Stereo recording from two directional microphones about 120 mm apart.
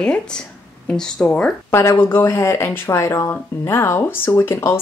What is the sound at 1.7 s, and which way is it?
Speech, 20° left (ahead or behind).